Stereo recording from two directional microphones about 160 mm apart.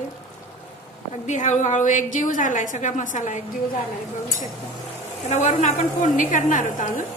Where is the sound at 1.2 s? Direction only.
50° left (ahead or behind).